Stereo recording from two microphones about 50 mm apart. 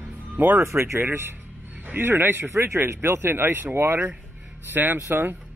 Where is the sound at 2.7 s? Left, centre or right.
Right.